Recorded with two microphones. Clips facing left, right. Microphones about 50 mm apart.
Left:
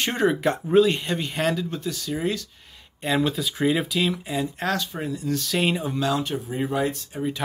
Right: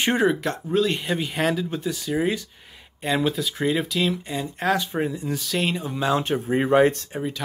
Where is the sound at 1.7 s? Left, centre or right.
Centre.